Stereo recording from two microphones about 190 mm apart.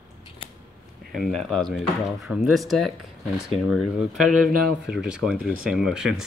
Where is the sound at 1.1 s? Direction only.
Centre (ahead or behind).